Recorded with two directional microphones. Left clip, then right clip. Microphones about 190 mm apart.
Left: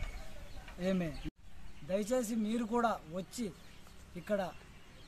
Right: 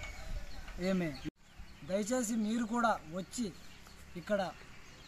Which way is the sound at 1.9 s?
15° left (ahead or behind).